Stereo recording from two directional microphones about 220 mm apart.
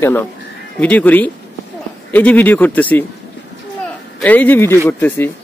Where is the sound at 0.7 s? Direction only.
5° left (ahead or behind).